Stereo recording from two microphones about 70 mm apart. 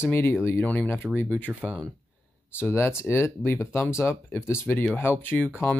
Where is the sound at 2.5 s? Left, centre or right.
Left.